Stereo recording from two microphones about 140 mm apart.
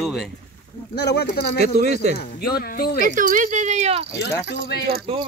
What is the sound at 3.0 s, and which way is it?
Speech, 70° right (ahead or behind).